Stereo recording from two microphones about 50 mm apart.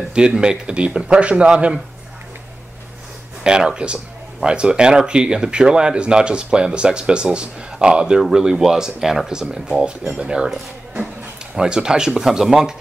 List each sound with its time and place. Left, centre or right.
0.1 s speech: centre
3.4 s speech: centre
11.5 s speech: centre